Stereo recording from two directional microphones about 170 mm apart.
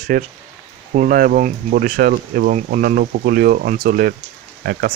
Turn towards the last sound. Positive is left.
turn(degrees=-60)  # may be behind; listen again after turning